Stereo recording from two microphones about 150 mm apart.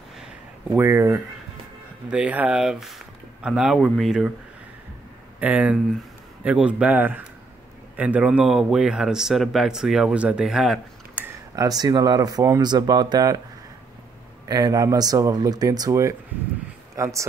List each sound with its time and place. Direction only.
0.7 s speech: 15° right (ahead or behind)
5.4 s speech: 10° right (ahead or behind)
11.5 s speech: 25° right (ahead or behind)
14.5 s speech: 25° right (ahead or behind)